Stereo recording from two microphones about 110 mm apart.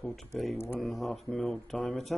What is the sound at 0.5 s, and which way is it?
Speech, 25° left (ahead or behind).